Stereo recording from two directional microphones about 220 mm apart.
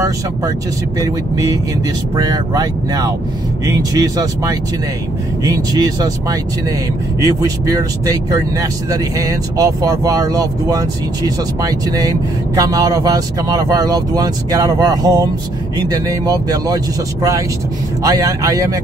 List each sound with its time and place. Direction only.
0.9 s speech: 15° right (ahead or behind)